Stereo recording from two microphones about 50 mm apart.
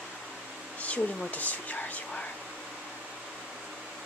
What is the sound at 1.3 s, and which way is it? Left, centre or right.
Speech, left.